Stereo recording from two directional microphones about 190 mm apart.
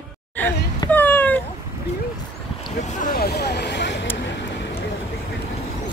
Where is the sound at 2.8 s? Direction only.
45° left (ahead or behind); by 4.8 s 65° left (ahead or behind).